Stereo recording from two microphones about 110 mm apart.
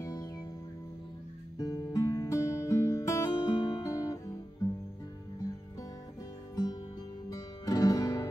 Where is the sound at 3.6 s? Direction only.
35° left (ahead or behind).